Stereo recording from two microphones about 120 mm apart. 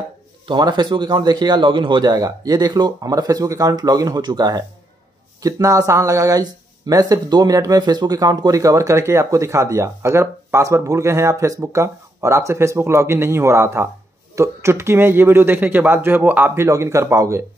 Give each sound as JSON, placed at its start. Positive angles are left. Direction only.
{"t": 0.5, "sound": "speech", "side_deg": -40}